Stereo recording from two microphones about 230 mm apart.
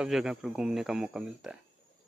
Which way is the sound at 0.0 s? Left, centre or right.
Centre.